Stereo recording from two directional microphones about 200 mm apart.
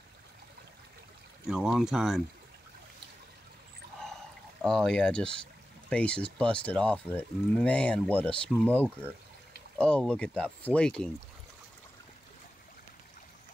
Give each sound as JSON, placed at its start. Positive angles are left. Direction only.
{"t": 1.5, "sound": "speech", "side_deg": -5}
{"t": 4.6, "sound": "speech", "side_deg": 5}